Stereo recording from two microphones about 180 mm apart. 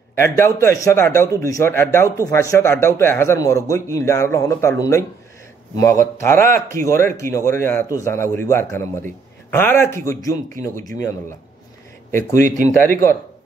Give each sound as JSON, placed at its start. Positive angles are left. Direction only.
{"t": 0.1, "sound": "speech", "side_deg": 15}
{"t": 12.1, "sound": "speech", "side_deg": 15}